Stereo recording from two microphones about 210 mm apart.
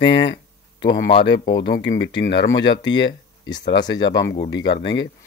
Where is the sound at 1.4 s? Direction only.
20° left (ahead or behind).